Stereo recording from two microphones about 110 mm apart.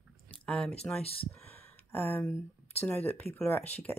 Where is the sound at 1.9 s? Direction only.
15° left (ahead or behind).